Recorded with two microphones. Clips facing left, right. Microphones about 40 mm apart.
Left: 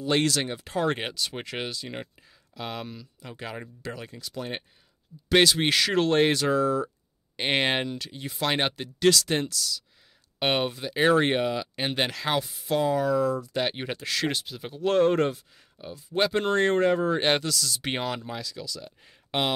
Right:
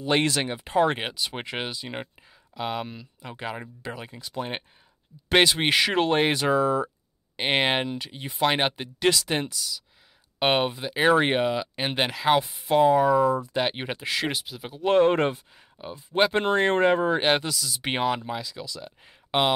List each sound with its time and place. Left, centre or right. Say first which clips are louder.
0.0 s speech: right 1 dB; right
7.3 s speech: right 2 dB; centre
12.4 s speech: right 3 dB; right; by 14.8 s centre
14.8 s speech: right 2 dB; right
17.4 s speech: left 1 dB; centre